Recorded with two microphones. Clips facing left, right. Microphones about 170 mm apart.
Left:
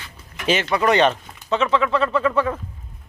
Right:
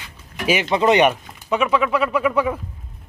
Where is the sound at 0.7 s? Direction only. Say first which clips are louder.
Right 2 dB; 20° right (ahead or behind).